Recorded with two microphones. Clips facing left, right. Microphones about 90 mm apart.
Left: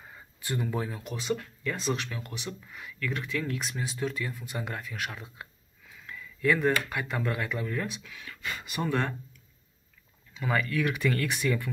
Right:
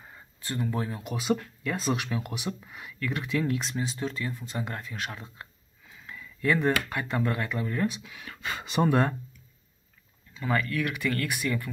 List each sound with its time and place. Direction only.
0.4 s speech: 10° left (ahead or behind); by 3.5 s 10° right (ahead or behind)
3.5 s speech: 5° left (ahead or behind)
8.6 s speech: 25° right (ahead or behind)
10.4 s speech: 10° left (ahead or behind)